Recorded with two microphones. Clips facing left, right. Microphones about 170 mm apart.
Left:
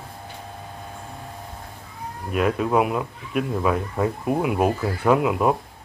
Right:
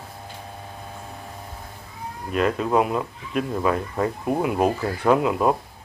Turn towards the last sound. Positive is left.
turn(degrees=5)  # may be behind; listen again after turning